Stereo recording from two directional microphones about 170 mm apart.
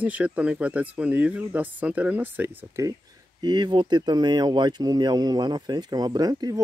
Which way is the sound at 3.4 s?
25° right (ahead or behind).